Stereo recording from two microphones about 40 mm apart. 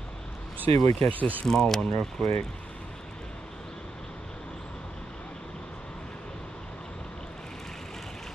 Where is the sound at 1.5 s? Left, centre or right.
Centre.